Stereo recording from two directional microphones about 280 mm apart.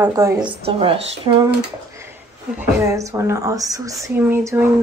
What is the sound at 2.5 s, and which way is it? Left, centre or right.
Speech, centre.